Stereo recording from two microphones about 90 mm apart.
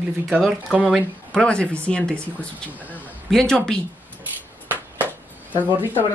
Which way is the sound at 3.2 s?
5° left (ahead or behind).